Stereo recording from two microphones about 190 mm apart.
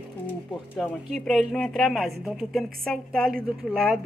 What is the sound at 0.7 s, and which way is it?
A woman's voice, 5° left (ahead or behind).